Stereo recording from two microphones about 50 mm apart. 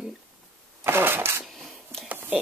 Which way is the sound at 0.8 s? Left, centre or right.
Right.